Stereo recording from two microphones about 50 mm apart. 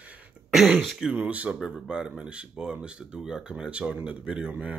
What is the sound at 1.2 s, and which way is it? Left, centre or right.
Speech, right.